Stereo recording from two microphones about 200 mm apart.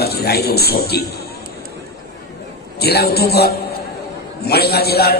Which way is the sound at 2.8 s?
50° left (ahead or behind).